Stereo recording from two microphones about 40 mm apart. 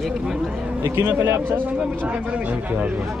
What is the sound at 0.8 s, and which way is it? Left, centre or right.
Speech, right.